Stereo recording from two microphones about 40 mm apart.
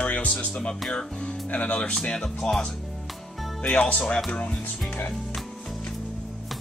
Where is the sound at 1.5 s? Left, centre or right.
Left.